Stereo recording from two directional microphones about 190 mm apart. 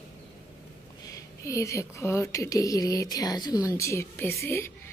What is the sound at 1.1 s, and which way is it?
A woman's voice, 15° left (ahead or behind).